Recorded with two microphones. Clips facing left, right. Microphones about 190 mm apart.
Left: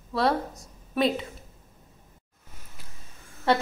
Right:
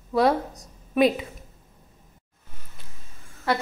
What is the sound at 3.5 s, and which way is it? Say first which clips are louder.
Speech: left 2 dB; 25° left (ahead or behind).